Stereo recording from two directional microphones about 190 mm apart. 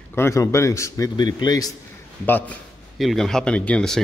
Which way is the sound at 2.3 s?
10° left (ahead or behind).